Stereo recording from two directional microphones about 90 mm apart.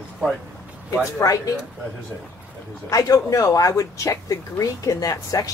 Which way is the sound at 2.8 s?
40° left (ahead or behind).